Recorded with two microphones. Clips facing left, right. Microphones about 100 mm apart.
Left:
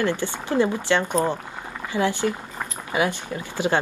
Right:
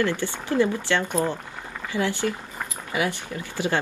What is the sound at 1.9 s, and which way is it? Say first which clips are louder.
Speech: left 2 dB; 20° left (ahead or behind).